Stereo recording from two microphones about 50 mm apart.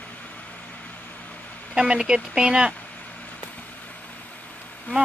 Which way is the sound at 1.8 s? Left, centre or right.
Centre.